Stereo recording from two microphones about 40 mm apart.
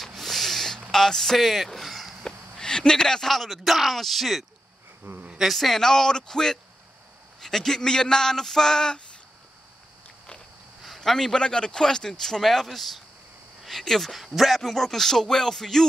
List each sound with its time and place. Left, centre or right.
0.0 s a sound: centre
0.9 s speech: centre
2.5 s a sound: centre
3.3 s speech: centre
5.1 s speech: right
5.5 s speech: centre
11.0 s speech: centre
14.1 s speech: centre
14.6 s speech: centre